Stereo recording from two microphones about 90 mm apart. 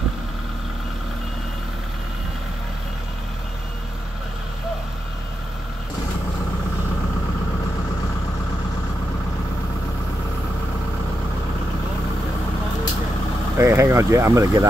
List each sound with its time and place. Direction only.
13.6 s speech: 30° right (ahead or behind)